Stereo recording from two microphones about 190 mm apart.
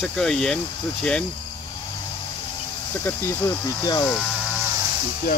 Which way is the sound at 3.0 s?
15° left (ahead or behind).